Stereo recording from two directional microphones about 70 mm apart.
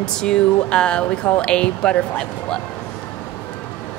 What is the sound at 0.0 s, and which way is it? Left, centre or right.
Speech, centre.